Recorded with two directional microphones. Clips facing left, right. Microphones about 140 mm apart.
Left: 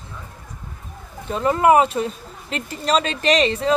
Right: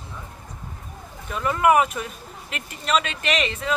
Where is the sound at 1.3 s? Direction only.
30° left (ahead or behind).